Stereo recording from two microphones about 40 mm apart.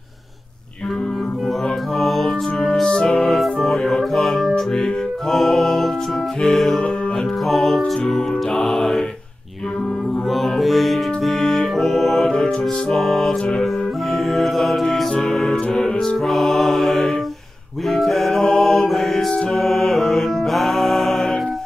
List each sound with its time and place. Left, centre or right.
2.0 s music: centre
2.8 s music: left
3.2 s music: centre
4.6 s music: centre
5.3 s music: centre
7.8 s music: centre
10.3 s music: centre
14.1 s mantra: centre
15.3 s music: centre
16.3 s mantra: centre
17.8 s music: centre